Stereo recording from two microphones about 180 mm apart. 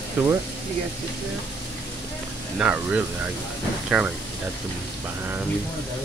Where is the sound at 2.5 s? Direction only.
10° right (ahead or behind).